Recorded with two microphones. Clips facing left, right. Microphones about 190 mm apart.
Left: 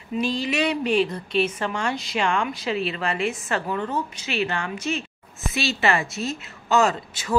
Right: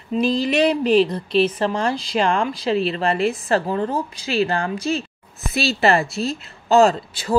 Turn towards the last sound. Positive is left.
turn(degrees=-35)  # may be behind; listen again after turning